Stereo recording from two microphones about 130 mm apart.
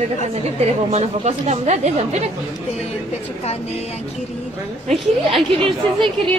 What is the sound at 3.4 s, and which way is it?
Speech, 55° left (ahead or behind).